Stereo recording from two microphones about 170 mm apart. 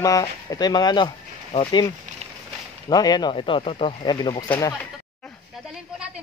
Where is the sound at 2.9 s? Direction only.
25° left (ahead or behind).